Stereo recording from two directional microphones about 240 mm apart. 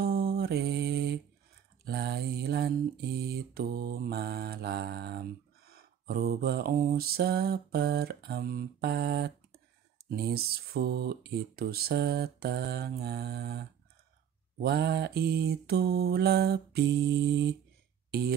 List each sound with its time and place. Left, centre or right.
0.0 s mantra: right